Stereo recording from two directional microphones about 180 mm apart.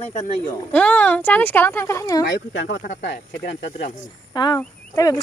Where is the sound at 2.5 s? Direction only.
90° left.